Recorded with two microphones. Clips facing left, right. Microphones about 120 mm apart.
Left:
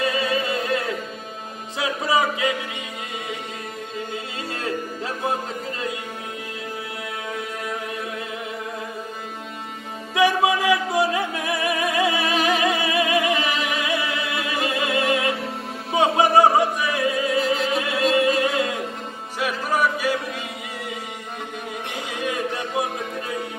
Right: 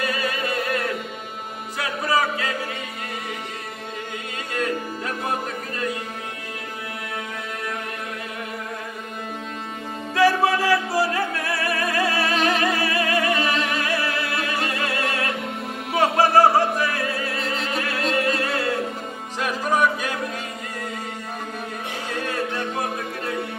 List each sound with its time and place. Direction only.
0.0 s music: 25° left (ahead or behind)
4.6 s music: 25° left (ahead or behind)
10.1 s music: 15° left (ahead or behind)
12.4 s music: 5° left (ahead or behind)
12.7 s music: 20° left (ahead or behind)
17.4 s opera: 5° left (ahead or behind)
17.7 s music: 20° left (ahead or behind)
19.4 s music: 5° left (ahead or behind)
22.1 s music: 15° left (ahead or behind)